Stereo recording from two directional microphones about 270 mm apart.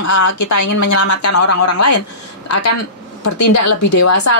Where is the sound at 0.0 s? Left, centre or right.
Left.